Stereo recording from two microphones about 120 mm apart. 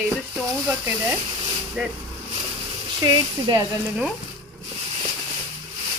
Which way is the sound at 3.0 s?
35° right (ahead or behind).